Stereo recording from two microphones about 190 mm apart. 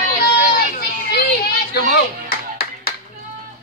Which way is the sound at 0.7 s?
55° left (ahead or behind).